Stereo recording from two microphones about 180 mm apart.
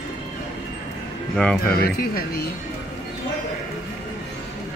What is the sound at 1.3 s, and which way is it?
Speech, 5° left (ahead or behind).